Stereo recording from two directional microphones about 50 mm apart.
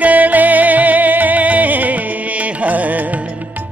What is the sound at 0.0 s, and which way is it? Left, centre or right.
Music, right.